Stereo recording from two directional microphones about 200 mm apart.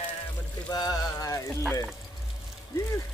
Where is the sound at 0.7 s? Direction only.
20° left (ahead or behind).